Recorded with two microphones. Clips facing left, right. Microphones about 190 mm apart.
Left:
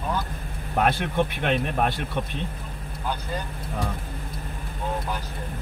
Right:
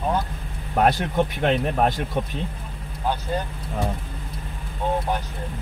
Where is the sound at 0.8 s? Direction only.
40° right (ahead or behind).